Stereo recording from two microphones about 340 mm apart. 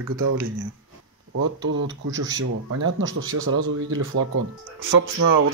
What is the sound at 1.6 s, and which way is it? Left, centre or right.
Speech, right.